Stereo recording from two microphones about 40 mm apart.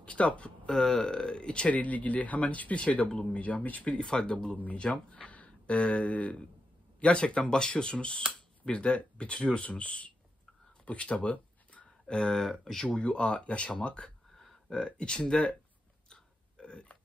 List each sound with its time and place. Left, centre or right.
0.0 s speech: left
0.7 s speech: centre
1.7 s speech: left
4.0 s speech: left
10.9 s a sound: left
12.2 s speech: centre
12.9 s speech: left
14.3 s a sound: centre
14.7 s speech: left
16.1 s burping: left